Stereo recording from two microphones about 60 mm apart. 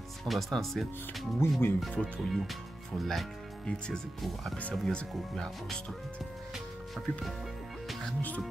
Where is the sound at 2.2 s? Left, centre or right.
Centre.